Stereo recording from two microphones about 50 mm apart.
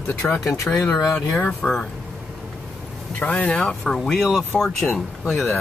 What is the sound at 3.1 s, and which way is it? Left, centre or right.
Speech, left.